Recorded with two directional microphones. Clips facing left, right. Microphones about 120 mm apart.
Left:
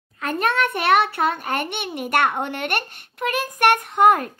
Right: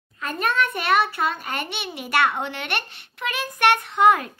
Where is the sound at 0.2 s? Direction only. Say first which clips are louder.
Left 2 dB; 65° left (ahead or behind).